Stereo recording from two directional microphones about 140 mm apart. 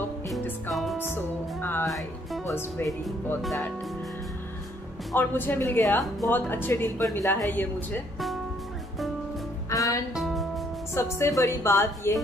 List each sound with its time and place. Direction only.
1.0 s music: 15° left (ahead or behind)
1.9 s music: centre (ahead or behind)
2.4 s a woman's voice: 20° left (ahead or behind)
5.1 s speech: 15° left (ahead or behind)
9.7 s music: 25° left (ahead or behind)
10.1 s music: centre (ahead or behind)
11.0 s a woman's voice: 20° left (ahead or behind)